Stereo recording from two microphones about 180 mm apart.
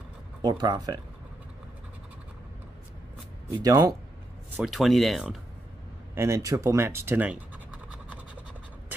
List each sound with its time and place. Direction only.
0.4 s speech: 25° right (ahead or behind)
3.5 s speech: 20° right (ahead or behind)
4.6 s speech: centre (ahead or behind)
6.1 s speech: 15° right (ahead or behind)